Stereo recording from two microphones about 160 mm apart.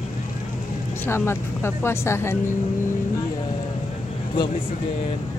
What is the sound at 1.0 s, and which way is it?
Speech, 15° left (ahead or behind).